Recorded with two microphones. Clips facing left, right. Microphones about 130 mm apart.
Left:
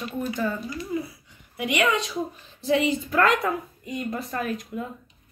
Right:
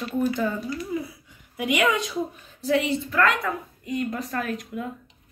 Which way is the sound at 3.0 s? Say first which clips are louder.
Left 1 dB; 30° left (ahead or behind).